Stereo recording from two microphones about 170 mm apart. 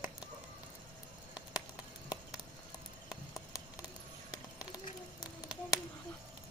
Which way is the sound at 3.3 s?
20° left (ahead or behind).